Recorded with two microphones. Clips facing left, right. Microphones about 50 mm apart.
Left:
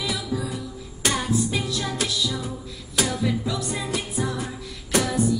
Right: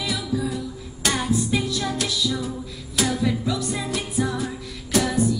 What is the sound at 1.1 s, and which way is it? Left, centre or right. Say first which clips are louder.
Music: right 2 dB; centre.